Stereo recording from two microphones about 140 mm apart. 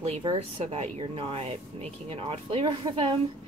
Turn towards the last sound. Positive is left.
turn(degrees=-35)  # may be behind; listen again after turning